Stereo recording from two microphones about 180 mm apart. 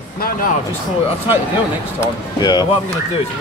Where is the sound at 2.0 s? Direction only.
20° left (ahead or behind).